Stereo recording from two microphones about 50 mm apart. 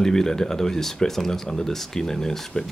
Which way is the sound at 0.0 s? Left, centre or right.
Centre.